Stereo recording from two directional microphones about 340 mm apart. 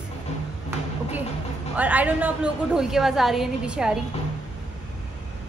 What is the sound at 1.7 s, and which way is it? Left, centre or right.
A woman's voice, centre.